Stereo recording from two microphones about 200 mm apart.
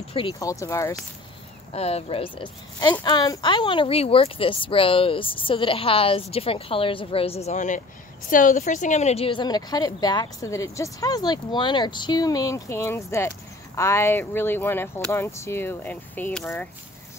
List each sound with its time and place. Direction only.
0.1 s speech: 25° left (ahead or behind)
1.7 s a woman's voice: 30° left (ahead or behind); by 16.6 s 10° left (ahead or behind)